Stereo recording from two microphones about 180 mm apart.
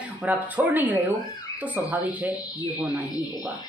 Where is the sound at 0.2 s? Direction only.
10° right (ahead or behind).